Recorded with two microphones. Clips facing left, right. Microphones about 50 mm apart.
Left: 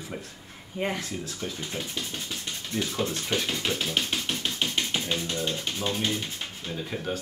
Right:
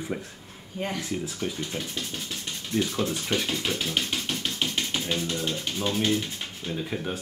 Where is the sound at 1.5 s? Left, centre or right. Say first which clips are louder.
Right 1 dB; centre.